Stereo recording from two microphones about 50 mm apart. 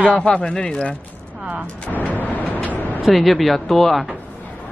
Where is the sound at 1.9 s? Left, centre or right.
Left.